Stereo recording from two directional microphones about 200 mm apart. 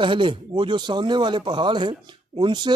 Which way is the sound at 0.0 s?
25° right (ahead or behind).